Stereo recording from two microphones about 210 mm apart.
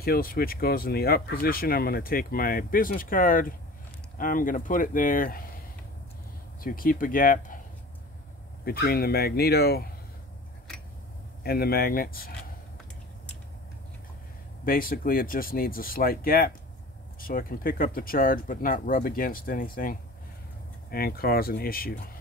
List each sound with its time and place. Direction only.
0.0 s speech: 45° left (ahead or behind)
6.6 s speech: 40° left (ahead or behind)
8.6 s speech: 45° left (ahead or behind)
11.4 s speech: 45° left (ahead or behind)
14.6 s speech: 45° left (ahead or behind)